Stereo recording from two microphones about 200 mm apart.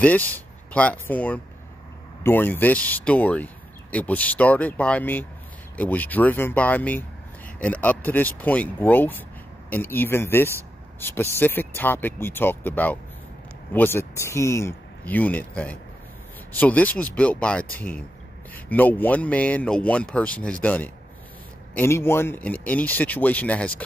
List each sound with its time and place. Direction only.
0.0 s speech: 10° left (ahead or behind)